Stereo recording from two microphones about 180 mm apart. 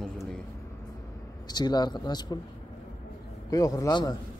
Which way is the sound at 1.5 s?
25° left (ahead or behind).